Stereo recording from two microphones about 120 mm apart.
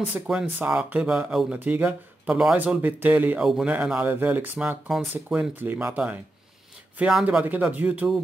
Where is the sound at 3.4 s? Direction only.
5° right (ahead or behind).